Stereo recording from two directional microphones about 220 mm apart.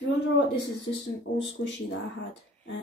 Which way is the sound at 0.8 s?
55° left (ahead or behind).